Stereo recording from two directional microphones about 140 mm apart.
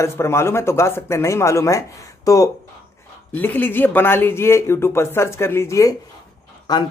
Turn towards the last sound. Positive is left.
turn(degrees=30)  # may be behind; listen again after turning